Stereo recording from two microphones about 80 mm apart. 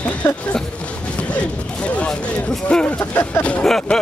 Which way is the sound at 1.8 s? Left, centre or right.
Centre.